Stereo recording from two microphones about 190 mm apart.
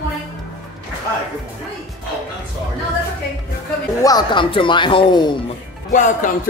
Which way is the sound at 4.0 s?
20° left (ahead or behind).